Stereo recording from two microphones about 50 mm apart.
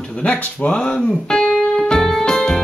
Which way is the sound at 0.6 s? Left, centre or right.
Left.